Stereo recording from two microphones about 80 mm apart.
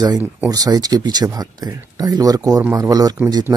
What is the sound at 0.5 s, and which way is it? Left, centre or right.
Speech, right.